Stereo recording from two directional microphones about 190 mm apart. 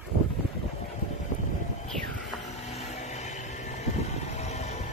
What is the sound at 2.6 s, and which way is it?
Vehicle, 35° left (ahead or behind).